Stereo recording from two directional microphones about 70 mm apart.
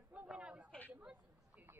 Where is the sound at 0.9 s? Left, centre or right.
Centre.